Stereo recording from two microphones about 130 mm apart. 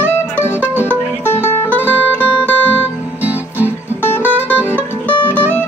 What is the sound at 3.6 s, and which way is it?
Music, 15° left (ahead or behind).